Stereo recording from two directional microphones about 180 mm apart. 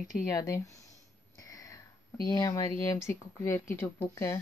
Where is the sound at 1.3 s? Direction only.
20° left (ahead or behind).